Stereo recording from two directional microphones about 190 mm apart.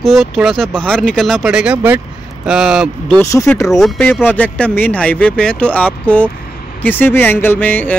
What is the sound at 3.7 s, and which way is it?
Speech, centre (ahead or behind).